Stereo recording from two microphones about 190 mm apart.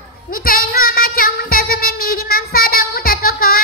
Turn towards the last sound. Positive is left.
turn(degrees=50)  # may be behind; listen again after turning